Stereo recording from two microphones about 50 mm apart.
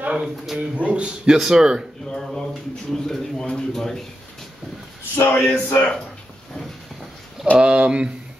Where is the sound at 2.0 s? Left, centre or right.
Centre.